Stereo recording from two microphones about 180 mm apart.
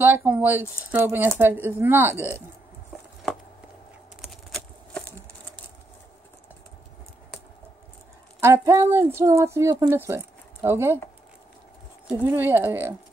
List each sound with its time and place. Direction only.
0.0 s speech: 10° right (ahead or behind)
4.2 s a sound: centre (ahead or behind)
8.4 s speech: 15° right (ahead or behind)
12.1 s speech: 10° right (ahead or behind)